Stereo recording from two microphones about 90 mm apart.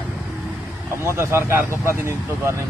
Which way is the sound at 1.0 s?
30° right (ahead or behind).